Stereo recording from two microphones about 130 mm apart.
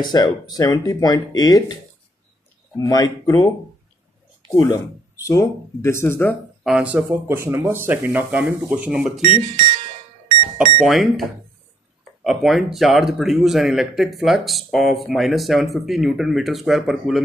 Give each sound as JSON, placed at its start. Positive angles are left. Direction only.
{"t": 0.0, "sound": "speech", "side_deg": 35}
{"t": 2.8, "sound": "speech", "side_deg": 30}
{"t": 4.5, "sound": "speech", "side_deg": 25}
{"t": 6.6, "sound": "speech", "side_deg": -10}
{"t": 10.8, "sound": "speech", "side_deg": 0}